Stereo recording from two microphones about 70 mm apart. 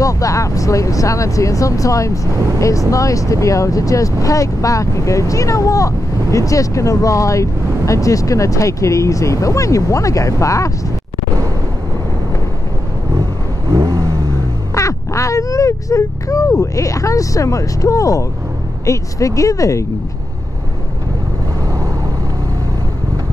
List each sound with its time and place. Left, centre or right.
0.0 s speech: left
13.7 s vehicle: right
14.8 s quack: left
18.9 s speech: left